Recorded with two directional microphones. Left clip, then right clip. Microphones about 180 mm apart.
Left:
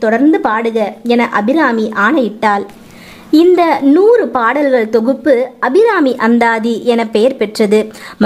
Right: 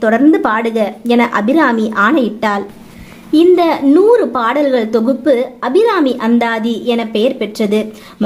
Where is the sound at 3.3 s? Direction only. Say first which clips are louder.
Left 1 dB; 30° left (ahead or behind).